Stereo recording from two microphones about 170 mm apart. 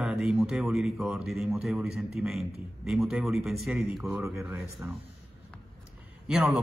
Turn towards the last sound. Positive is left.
turn(degrees=-5)  # may be behind; listen again after turning